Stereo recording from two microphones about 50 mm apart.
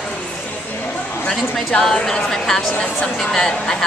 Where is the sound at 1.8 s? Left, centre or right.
Centre.